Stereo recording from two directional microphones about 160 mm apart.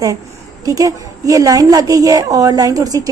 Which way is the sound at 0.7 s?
20° right (ahead or behind).